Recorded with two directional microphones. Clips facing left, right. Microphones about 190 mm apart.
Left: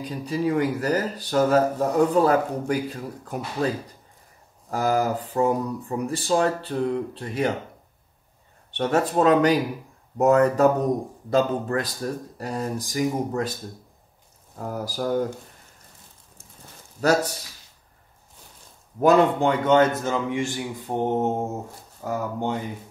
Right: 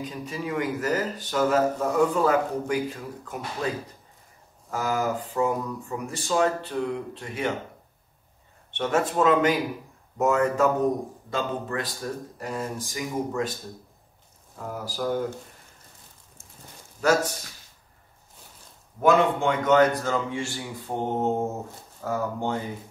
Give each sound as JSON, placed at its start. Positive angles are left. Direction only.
{"t": 0.0, "sound": "a man's voice", "side_deg": 35}
{"t": 8.7, "sound": "speech", "side_deg": 40}
{"t": 14.6, "sound": "speech", "side_deg": 40}
{"t": 18.9, "sound": "a man's voice", "side_deg": 35}